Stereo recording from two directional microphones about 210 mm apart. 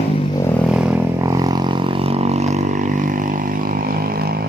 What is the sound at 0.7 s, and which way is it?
Vehicle, 5° right (ahead or behind).